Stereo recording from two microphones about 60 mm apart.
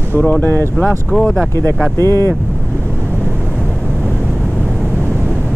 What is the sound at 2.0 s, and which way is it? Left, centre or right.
Speech, right.